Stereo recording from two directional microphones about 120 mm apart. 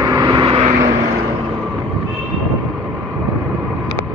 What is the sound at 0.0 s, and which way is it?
Vehicle, 30° right (ahead or behind).